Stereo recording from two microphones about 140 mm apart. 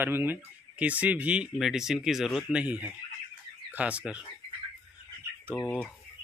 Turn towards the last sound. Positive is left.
turn(degrees=15)  # may be behind; listen again after turning